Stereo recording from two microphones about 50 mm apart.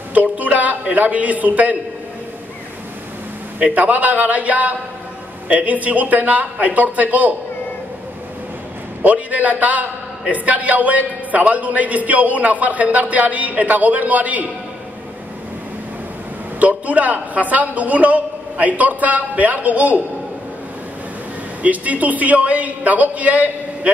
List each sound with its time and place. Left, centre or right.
0.1 s a man's voice: right
3.5 s a man's voice: right
9.0 s a man's voice: right
16.5 s a man's voice: right
21.6 s a man's voice: right